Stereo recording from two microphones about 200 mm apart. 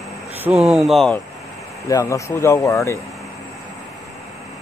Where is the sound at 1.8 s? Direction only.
15° left (ahead or behind).